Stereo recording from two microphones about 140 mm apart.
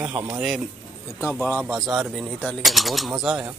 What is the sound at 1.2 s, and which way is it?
Speech, 15° left (ahead or behind).